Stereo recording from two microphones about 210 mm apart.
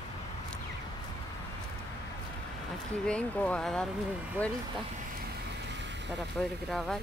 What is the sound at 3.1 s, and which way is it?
Speech, 5° left (ahead or behind).